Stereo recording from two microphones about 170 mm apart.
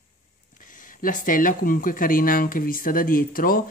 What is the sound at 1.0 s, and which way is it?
Speech, 55° left (ahead or behind).